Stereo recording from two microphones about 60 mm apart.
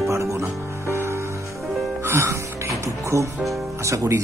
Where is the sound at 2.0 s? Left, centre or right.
Right.